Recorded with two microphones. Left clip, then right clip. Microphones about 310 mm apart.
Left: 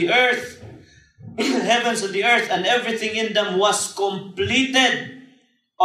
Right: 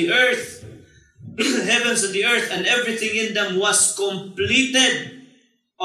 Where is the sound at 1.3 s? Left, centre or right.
Left.